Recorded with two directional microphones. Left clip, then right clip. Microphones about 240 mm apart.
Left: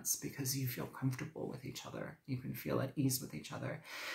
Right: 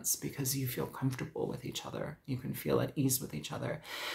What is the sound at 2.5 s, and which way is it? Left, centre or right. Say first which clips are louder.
Speech: right 7 dB; right.